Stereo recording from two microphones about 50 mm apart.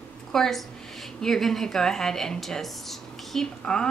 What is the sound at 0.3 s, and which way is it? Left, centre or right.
A woman's voice, centre.